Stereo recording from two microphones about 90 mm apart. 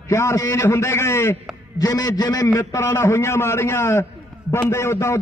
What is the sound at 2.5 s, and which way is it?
A man's voice, 25° left (ahead or behind).